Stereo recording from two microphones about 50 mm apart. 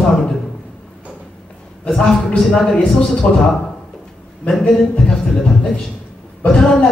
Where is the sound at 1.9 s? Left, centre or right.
Centre.